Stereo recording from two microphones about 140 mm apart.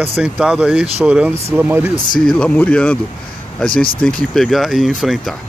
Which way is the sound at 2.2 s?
10° left (ahead or behind).